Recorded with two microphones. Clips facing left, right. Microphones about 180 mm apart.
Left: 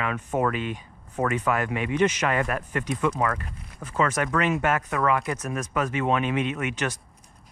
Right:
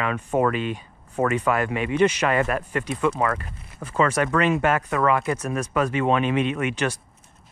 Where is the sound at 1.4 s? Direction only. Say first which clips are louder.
Right 3 dB; 30° right (ahead or behind).